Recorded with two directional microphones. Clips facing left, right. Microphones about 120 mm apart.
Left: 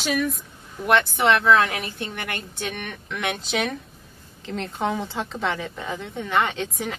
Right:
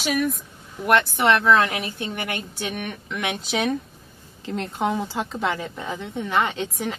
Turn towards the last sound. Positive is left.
turn(degrees=0)  # may be behind; listen again after turning